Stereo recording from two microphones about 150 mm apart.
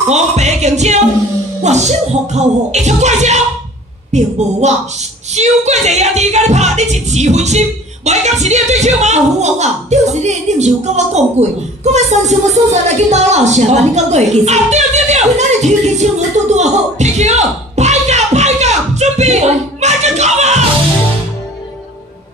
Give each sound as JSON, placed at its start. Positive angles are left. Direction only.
{"t": 0.1, "sound": "music", "side_deg": -50}
{"t": 5.3, "sound": "speech", "side_deg": -50}
{"t": 5.9, "sound": "music", "side_deg": -50}
{"t": 9.6, "sound": "a sound", "side_deg": -50}